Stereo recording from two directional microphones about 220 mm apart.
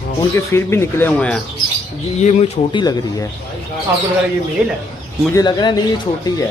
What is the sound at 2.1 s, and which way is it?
A man's voice, 30° left (ahead or behind).